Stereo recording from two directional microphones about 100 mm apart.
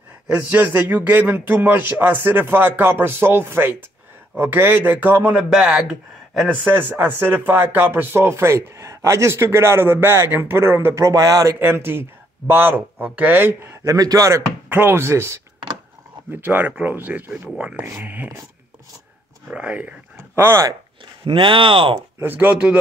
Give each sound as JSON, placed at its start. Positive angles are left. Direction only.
{"t": 0.3, "sound": "a man's voice", "side_deg": -15}
{"t": 6.5, "sound": "speech", "side_deg": -20}
{"t": 11.6, "sound": "speech", "side_deg": -20}
{"t": 13.9, "sound": "speech", "side_deg": -40}
{"t": 14.7, "sound": "a man's voice", "side_deg": -20}
{"t": 19.5, "sound": "speech", "side_deg": -15}
{"t": 21.2, "sound": "speech", "side_deg": -60}
{"t": 22.2, "sound": "a man's voice", "side_deg": -20}